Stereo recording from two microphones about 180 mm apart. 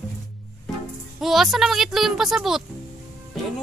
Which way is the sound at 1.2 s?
Centre (ahead or behind).